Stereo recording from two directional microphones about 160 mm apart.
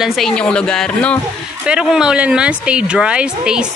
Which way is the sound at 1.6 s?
5° right (ahead or behind).